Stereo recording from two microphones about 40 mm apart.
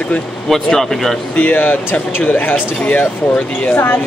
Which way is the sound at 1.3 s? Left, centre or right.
Left.